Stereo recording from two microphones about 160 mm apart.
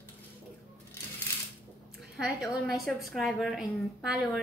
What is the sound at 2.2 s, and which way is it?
A woman's voice, centre (ahead or behind).